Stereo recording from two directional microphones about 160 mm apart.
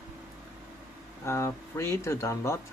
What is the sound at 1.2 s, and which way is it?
Speech, 15° left (ahead or behind).